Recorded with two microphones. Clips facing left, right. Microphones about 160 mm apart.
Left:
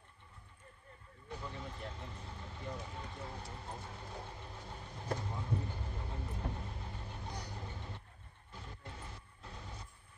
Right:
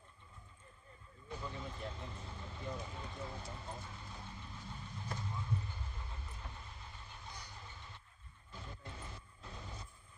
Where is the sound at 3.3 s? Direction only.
60° left (ahead or behind).